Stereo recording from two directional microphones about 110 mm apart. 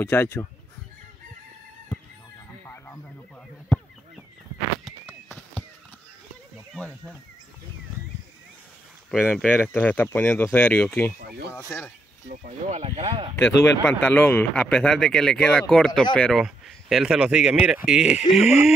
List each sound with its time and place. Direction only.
0.0 s speech: 20° left (ahead or behind)
9.1 s speech: 10° left (ahead or behind)
12.7 s speech: 80° right; by 13.3 s 65° right (ahead or behind)
13.4 s speech: 15° left (ahead or behind); by 18.6 s 5° right (ahead or behind)